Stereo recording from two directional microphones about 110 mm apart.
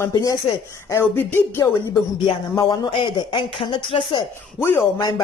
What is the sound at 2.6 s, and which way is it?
Speech, 40° left (ahead or behind).